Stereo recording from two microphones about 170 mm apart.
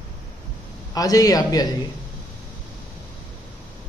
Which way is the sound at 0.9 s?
20° left (ahead or behind).